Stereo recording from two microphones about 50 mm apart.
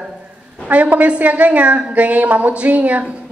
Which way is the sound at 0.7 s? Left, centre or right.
Right.